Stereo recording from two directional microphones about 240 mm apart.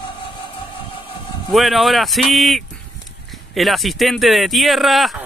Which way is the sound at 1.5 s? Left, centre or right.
Centre.